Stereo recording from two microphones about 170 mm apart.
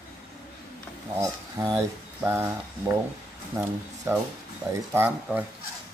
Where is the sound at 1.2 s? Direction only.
20° right (ahead or behind).